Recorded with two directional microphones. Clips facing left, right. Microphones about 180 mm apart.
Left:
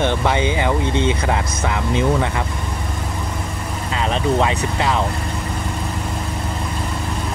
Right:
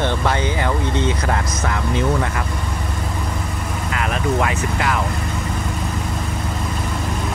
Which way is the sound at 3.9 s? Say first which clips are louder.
Left 2 dB; 25° left (ahead or behind).